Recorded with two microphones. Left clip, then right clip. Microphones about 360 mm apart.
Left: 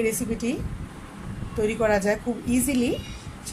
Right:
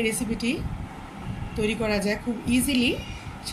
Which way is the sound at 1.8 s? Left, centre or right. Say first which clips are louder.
Left 4 dB; left.